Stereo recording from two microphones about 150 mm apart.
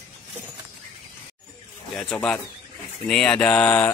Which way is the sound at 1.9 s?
5° left (ahead or behind).